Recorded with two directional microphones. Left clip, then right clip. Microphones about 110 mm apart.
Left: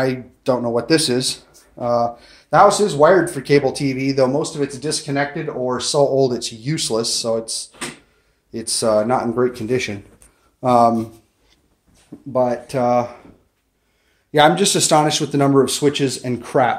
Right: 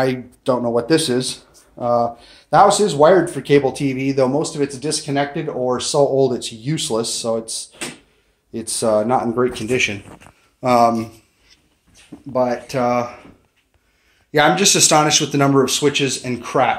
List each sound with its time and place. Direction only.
0.0 s speech: 10° left (ahead or behind)
4.3 s speech: 5° right (ahead or behind)
9.5 s speech: 15° left (ahead or behind)
12.3 s speech: 35° left (ahead or behind)
14.3 s speech: 25° left (ahead or behind)
15.6 s speech: 45° left (ahead or behind); by 16.7 s 70° left (ahead or behind)